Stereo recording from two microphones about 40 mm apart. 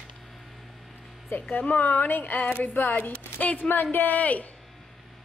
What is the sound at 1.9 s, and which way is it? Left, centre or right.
A woman's voice, left.